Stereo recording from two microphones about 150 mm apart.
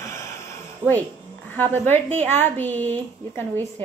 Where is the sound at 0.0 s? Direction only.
20° left (ahead or behind).